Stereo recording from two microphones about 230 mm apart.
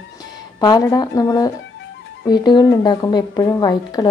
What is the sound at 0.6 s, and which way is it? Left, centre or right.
A woman's voice, centre.